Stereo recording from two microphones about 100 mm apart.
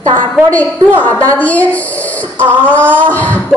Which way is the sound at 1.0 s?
15° left (ahead or behind).